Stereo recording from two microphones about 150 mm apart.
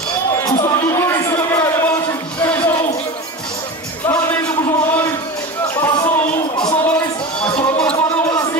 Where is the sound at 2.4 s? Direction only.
10° left (ahead or behind).